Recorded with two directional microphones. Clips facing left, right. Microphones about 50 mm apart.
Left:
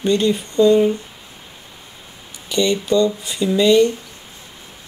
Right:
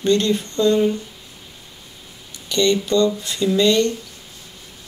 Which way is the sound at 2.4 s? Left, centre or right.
Centre.